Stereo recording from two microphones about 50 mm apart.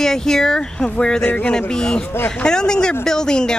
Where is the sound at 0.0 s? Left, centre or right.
Centre.